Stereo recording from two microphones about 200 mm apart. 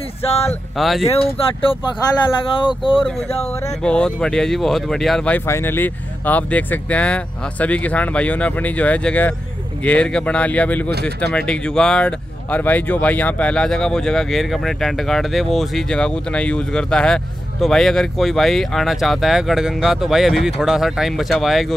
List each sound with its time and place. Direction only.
0.7 s speech: centre (ahead or behind)
1.1 s speech: 25° left (ahead or behind)
3.8 s speech: 5° left (ahead or behind)